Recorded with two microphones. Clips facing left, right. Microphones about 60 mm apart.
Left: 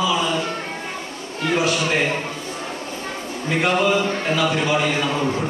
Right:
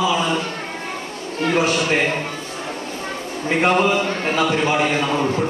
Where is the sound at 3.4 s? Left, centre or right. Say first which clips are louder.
Right 2 dB; right.